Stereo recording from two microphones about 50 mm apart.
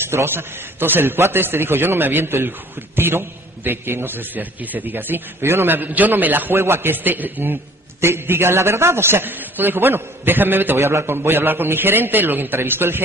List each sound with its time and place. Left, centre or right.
0.1 s a man's voice: right
6.5 s a man's voice: right
8.0 s a man's voice: right
10.8 s a man's voice: right